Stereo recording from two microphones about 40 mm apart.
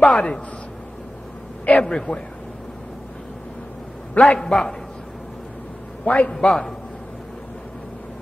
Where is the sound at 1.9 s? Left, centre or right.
Left.